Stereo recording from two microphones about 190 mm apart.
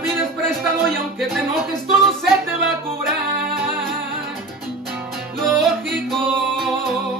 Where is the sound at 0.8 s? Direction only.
Centre (ahead or behind).